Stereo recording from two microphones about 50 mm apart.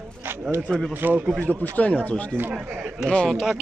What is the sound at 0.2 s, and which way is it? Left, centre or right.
Speech, right.